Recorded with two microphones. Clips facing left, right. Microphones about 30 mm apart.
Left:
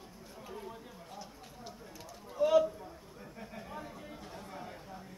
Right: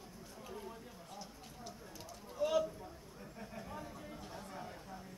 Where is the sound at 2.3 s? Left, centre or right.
Centre.